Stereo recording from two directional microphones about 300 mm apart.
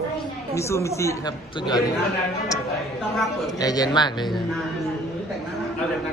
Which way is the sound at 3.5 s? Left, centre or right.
Centre.